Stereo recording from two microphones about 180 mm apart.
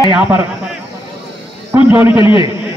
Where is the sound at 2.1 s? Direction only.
30° left (ahead or behind).